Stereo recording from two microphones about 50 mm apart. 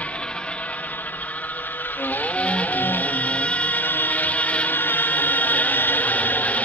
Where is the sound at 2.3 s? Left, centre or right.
Left.